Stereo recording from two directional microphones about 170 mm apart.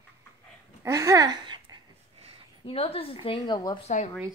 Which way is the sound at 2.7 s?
35° left (ahead or behind).